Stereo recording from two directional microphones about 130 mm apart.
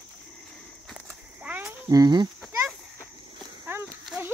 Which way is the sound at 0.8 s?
Centre (ahead or behind).